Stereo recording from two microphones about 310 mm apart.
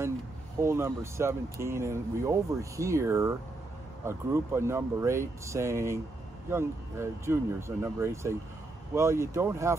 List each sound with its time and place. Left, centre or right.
0.6 s speech: centre